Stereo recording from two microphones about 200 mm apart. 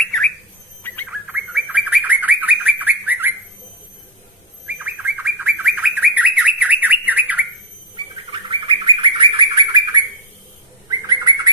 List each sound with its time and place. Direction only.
0.0 s squawk: centre (ahead or behind)
1.0 s bird: 5° right (ahead or behind)
4.6 s bird: 10° right (ahead or behind)
7.9 s bird: 25° right (ahead or behind)